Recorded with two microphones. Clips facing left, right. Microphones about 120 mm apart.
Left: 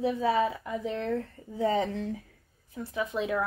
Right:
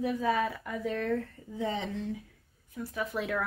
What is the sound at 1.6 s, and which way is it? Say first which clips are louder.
Speech: left 6 dB; 40° left (ahead or behind).